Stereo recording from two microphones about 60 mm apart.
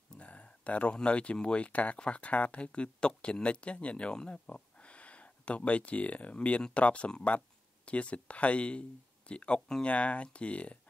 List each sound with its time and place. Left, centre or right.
0.2 s speech: left